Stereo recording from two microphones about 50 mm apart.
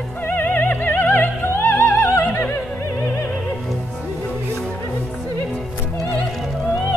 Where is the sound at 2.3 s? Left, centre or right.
Left.